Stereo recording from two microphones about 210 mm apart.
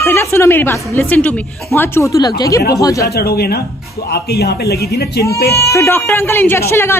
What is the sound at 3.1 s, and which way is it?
Speech, 50° left (ahead or behind).